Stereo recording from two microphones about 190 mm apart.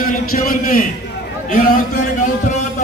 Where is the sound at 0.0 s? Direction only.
50° left (ahead or behind).